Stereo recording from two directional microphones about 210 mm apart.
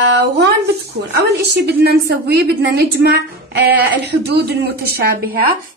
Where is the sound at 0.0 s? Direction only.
55° right (ahead or behind).